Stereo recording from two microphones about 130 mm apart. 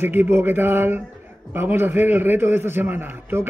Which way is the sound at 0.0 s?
15° right (ahead or behind).